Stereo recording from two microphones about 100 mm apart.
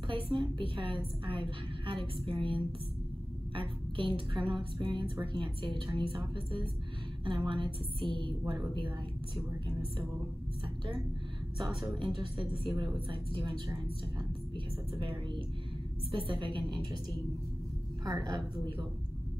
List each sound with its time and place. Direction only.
0.1 s a woman's voice: 55° right (ahead or behind)
12.0 s a woman's voice: 55° right (ahead or behind)
15.0 s a woman's voice: 55° right (ahead or behind)
18.0 s a woman's voice: 40° right (ahead or behind)